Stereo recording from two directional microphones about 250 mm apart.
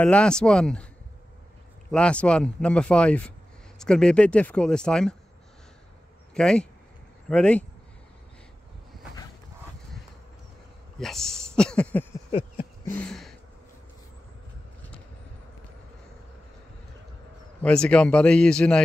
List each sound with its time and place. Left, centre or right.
0.0 s speech: centre
1.9 s speech: centre
6.3 s speech: centre
11.0 s speech: centre
12.3 s a sound: left
12.9 s a sound: centre
17.6 s speech: centre